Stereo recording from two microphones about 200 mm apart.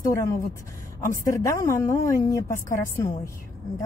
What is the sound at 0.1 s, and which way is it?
A woman's voice, 15° left (ahead or behind).